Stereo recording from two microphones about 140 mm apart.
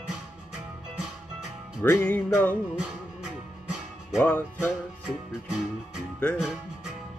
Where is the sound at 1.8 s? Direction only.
15° left (ahead or behind).